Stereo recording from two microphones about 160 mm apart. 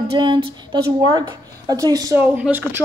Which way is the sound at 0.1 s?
25° right (ahead or behind).